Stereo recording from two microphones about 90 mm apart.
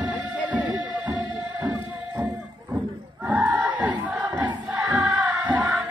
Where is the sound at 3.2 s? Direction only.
20° right (ahead or behind).